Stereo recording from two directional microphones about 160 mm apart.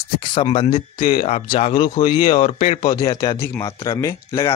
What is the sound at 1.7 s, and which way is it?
Speech, 30° left (ahead or behind).